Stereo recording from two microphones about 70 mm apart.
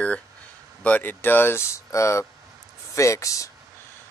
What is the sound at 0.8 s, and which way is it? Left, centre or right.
Speech, left.